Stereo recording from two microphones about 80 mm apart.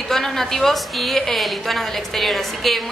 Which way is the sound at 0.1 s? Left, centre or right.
Centre.